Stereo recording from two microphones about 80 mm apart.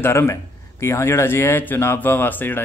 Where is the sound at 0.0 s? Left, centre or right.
Left.